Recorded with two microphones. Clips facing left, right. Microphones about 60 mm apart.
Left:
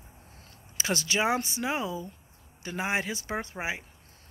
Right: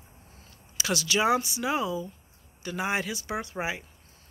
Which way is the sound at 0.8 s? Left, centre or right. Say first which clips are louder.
Right 1 dB; left.